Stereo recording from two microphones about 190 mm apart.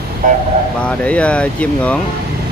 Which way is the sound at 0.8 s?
5° left (ahead or behind).